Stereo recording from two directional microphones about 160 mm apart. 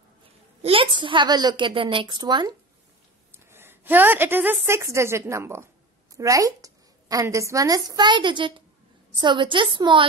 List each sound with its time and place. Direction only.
0.6 s a woman's voice: 35° right (ahead or behind)
3.3 s a woman's voice: 15° right (ahead or behind)